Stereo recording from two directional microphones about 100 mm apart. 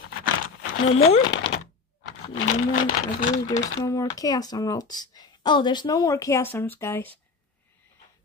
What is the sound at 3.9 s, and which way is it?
Speech, 35° left (ahead or behind).